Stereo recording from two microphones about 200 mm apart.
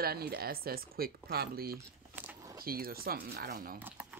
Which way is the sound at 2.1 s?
10° right (ahead or behind).